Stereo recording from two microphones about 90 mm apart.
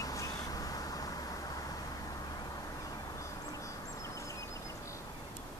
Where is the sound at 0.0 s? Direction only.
40° left (ahead or behind).